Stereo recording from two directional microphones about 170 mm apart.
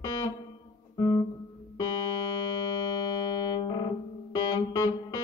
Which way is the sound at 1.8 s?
25° left (ahead or behind).